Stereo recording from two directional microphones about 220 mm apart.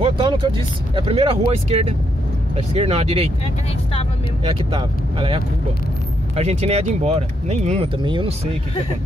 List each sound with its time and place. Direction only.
0.0 s speech: 25° right (ahead or behind)
4.5 s speech: 25° right (ahead or behind)